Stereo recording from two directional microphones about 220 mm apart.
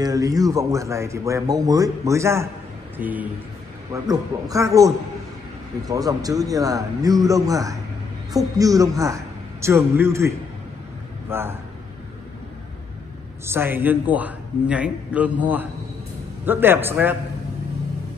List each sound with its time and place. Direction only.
0.0 s a man's voice: 15° right (ahead or behind)
13.5 s speech: 10° right (ahead or behind)